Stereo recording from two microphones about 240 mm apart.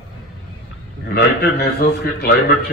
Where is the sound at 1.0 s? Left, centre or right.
Left.